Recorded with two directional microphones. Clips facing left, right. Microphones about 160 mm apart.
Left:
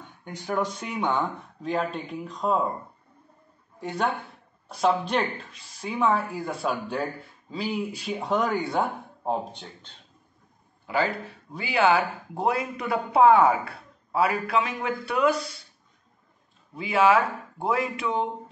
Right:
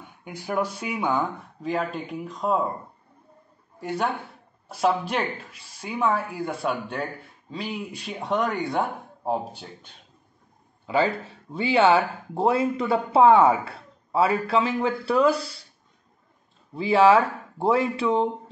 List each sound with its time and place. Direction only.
0.0 s speech: 10° right (ahead or behind)
3.8 s speech: centre (ahead or behind)
10.9 s speech: 25° right (ahead or behind)
16.7 s speech: 30° right (ahead or behind)